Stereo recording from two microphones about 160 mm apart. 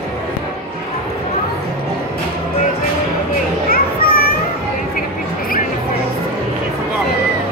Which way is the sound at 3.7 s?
70° left (ahead or behind).